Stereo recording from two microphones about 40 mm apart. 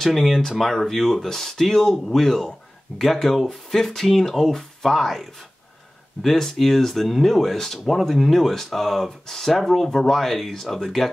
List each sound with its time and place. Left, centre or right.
0.0 s speech: centre